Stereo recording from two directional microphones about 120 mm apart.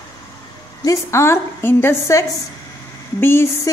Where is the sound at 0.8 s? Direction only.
25° left (ahead or behind).